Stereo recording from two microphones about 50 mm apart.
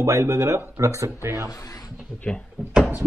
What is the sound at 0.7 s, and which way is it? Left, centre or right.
Speech, right.